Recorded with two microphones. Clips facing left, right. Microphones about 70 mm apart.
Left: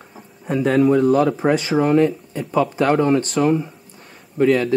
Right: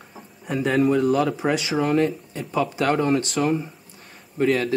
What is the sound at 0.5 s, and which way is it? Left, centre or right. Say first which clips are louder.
Speech: left 4 dB; left.